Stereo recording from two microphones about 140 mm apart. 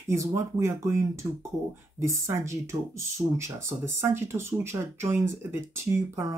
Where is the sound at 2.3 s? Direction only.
20° right (ahead or behind).